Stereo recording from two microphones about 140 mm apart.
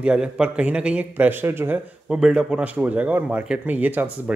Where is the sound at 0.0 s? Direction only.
5° right (ahead or behind).